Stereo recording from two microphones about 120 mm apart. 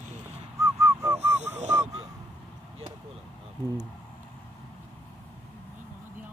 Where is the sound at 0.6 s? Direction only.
25° right (ahead or behind).